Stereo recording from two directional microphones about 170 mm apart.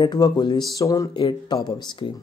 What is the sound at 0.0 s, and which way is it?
Speech, 25° left (ahead or behind).